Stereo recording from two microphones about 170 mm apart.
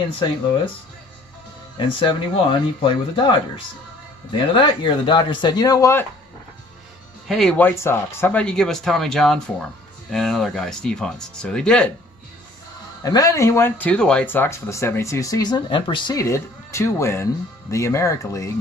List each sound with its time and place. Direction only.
1.8 s speech: 30° left (ahead or behind)
7.2 s speech: 5° left (ahead or behind)
13.0 s speech: 20° left (ahead or behind)